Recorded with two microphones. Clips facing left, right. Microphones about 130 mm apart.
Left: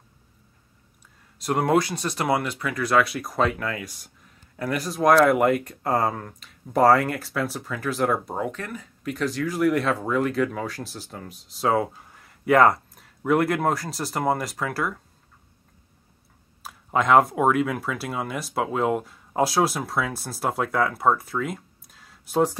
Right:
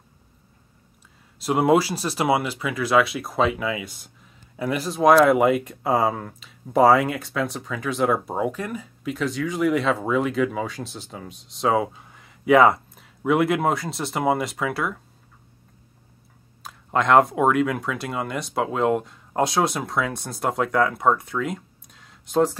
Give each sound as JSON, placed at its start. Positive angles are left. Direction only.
{"t": 1.4, "sound": "speech", "side_deg": -5}
{"t": 8.4, "sound": "speech", "side_deg": -10}
{"t": 9.0, "sound": "speech", "side_deg": 0}
{"t": 16.6, "sound": "speech", "side_deg": 5}